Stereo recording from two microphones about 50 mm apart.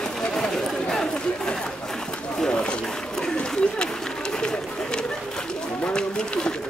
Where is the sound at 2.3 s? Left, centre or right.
Centre.